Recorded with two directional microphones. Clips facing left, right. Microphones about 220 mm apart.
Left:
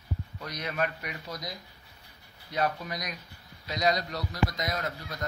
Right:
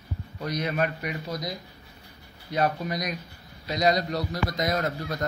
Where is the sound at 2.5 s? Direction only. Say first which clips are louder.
Right 4 dB; 35° right (ahead or behind).